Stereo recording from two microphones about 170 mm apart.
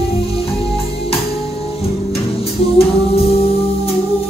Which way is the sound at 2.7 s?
35° left (ahead or behind).